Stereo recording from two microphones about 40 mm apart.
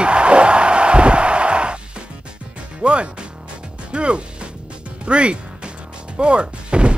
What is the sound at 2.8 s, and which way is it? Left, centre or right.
Speech, right.